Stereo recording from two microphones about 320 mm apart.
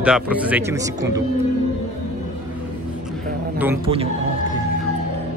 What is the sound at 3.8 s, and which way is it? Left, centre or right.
Speech, centre.